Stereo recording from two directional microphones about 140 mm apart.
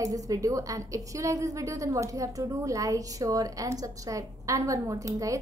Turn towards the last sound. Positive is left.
turn(degrees=-25)  # may be behind; listen again after turning